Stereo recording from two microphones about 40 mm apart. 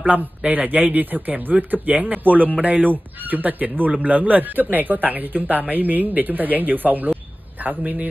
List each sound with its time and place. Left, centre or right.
0.0 s speech: right